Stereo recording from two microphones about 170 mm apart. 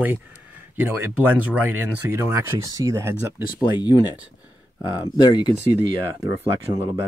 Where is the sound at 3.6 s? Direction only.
25° left (ahead or behind).